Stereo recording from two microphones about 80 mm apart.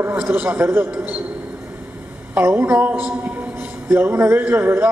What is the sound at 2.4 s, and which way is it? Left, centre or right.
A man's voice, right.